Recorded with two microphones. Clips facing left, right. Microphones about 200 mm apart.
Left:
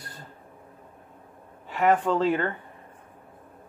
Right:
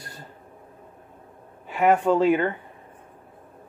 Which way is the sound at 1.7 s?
15° right (ahead or behind).